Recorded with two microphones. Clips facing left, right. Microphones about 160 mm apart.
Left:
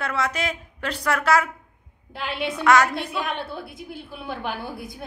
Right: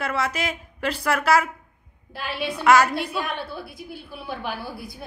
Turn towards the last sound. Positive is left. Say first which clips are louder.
# left 1 dB
turn(degrees=20)  # may be behind; listen again after turning